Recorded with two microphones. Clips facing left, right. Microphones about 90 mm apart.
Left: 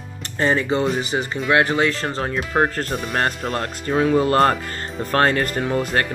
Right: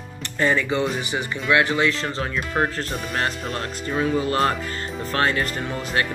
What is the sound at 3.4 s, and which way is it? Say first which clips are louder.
Speech: left 4 dB; 45° left (ahead or behind).